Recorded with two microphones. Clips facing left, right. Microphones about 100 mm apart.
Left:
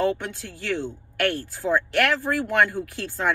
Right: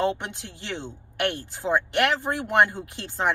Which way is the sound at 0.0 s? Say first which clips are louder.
Left 2 dB; 20° right (ahead or behind).